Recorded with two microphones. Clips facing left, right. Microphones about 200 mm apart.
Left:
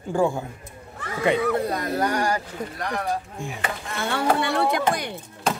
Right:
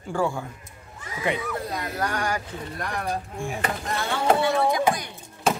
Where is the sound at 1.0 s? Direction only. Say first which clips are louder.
Left 6 dB; 65° left (ahead or behind).